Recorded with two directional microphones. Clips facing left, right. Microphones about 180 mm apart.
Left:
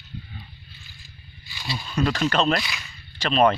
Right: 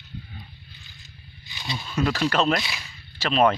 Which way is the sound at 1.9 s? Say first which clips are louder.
Left 1 dB; 5° right (ahead or behind).